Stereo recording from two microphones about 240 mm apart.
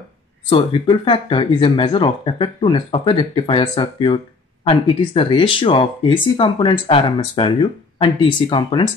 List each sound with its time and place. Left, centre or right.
0.5 s speech: left